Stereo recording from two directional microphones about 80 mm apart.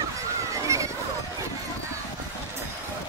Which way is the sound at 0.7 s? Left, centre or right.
Right.